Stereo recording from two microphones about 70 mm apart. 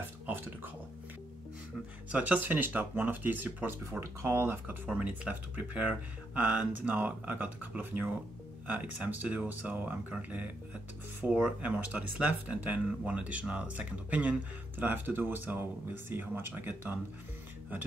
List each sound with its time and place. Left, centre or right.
0.3 s a sound: right
2.1 s speech: right
4.0 s speech: right
4.9 s speech: centre